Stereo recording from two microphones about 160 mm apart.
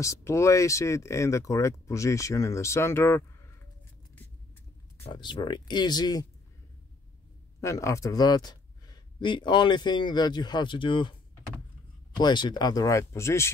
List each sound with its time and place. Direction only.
0.0 s speech: 20° left (ahead or behind)
5.0 s speech: 30° left (ahead or behind)
7.6 s speech: 20° left (ahead or behind)
12.2 s speech: 30° left (ahead or behind)